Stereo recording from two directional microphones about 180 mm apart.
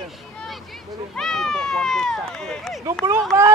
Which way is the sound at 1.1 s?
5° left (ahead or behind).